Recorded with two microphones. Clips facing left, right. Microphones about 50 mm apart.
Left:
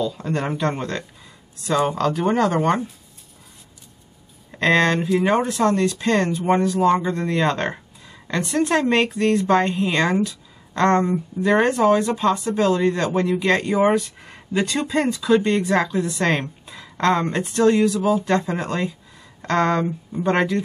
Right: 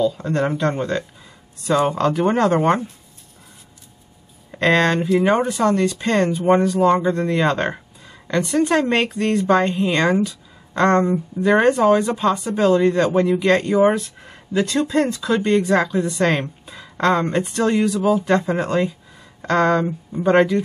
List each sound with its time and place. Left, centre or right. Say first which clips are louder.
0.2 s speech: right 3 dB; centre
0.7 s a woman's voice: right 3 dB; centre
4.5 s a woman's voice: right 1 dB; centre
13.4 s speech: right 3 dB; centre
14.6 s speech: right 3 dB; left
15.5 s a woman's voice: right 3 dB; centre